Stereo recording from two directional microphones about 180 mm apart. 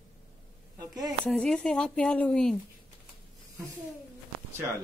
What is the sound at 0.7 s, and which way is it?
Speech, 20° right (ahead or behind).